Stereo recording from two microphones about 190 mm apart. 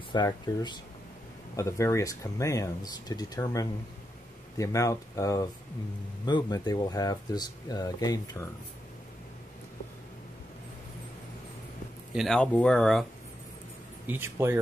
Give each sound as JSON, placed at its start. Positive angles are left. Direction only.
{"t": 0.1, "sound": "speech", "side_deg": 20}
{"t": 12.1, "sound": "speech", "side_deg": 0}
{"t": 14.0, "sound": "speech", "side_deg": -10}